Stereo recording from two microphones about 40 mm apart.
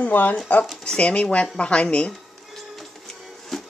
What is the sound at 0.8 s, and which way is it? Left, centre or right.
Speech, left.